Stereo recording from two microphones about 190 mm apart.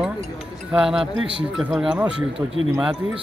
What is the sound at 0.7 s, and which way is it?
Speech, 5° right (ahead or behind).